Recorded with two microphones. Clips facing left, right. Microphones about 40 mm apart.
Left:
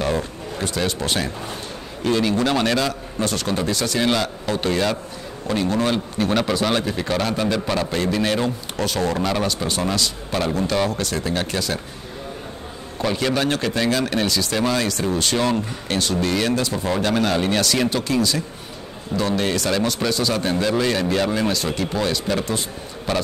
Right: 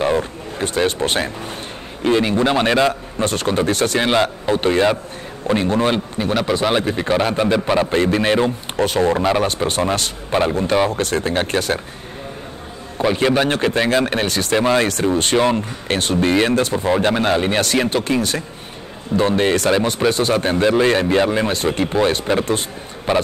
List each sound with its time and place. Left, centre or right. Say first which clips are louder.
0.0 s a sound: right 4 dB; centre
0.8 s a man's voice: right 4 dB; right
4.1 s a man's voice: right 5 dB; right
6.1 s a man's voice: right 1 dB; centre
9.7 s speech: right 3 dB; right
13.0 s speech: right 5 dB; right
16.7 s a man's voice: right 4 dB; right
19.7 s a man's voice: right 4 dB; right
20.1 s speech: right 4 dB; right
23.1 s a man's voice: right 5 dB; right